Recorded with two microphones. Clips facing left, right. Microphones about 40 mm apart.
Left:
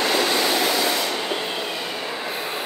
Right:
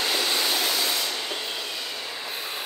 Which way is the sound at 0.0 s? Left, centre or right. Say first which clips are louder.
Left 5 dB; left.